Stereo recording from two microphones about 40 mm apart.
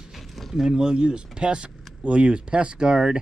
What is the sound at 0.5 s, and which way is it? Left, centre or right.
Speech, centre.